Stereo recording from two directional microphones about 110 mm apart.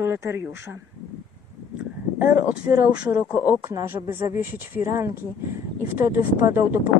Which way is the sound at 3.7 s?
20° right (ahead or behind).